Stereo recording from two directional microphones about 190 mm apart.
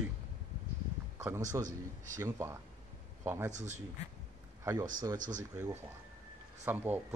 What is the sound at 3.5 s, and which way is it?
Speech, 40° right (ahead or behind).